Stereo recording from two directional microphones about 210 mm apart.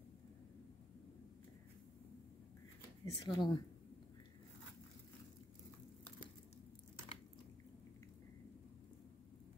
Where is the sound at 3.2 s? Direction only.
20° left (ahead or behind).